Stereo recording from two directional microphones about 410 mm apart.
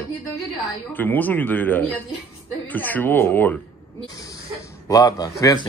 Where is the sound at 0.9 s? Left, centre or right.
Centre.